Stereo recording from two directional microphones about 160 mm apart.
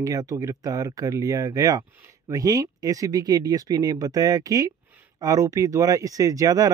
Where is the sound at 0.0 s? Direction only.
20° right (ahead or behind).